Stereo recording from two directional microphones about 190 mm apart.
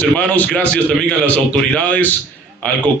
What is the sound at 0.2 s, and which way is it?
A man's voice, 10° left (ahead or behind).